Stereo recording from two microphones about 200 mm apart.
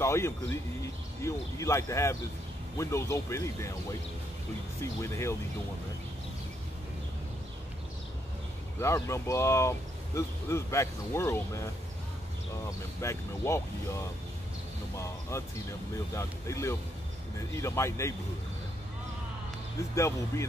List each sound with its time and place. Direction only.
0.0 s speech: 15° left (ahead or behind)
5.0 s speech: 15° left (ahead or behind)
8.7 s speech: 15° left (ahead or behind)
15.0 s speech: 15° left (ahead or behind)
20.0 s speech: 15° left (ahead or behind)